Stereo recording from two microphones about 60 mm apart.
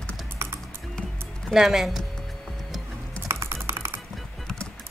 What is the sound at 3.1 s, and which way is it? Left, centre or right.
Music, right.